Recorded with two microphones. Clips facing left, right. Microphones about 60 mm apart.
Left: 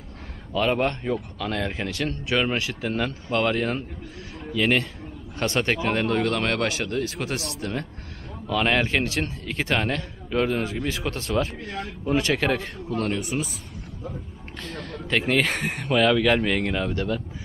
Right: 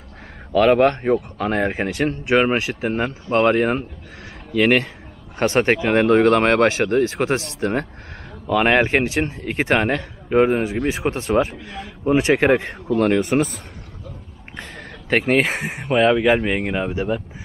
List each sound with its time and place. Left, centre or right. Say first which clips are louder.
0.5 s speech: right 9 dB; right
14.6 s a sound: left 1 dB; right
15.4 s speech: right 2 dB; centre